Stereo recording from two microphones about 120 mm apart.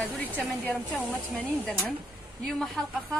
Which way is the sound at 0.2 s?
10° left (ahead or behind).